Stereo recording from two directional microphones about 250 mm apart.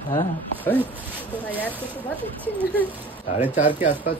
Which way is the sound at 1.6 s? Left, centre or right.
Centre.